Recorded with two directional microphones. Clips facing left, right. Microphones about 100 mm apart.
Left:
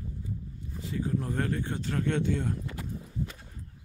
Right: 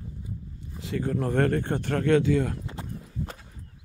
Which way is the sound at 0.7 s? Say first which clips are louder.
Right 3 dB; 80° right.